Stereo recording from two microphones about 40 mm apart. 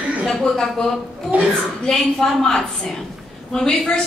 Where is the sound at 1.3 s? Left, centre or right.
Right.